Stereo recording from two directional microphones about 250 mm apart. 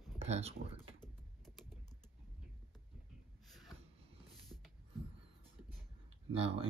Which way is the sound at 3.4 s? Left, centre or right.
Centre.